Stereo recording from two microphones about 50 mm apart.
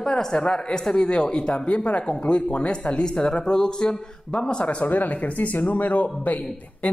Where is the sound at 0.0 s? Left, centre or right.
Centre.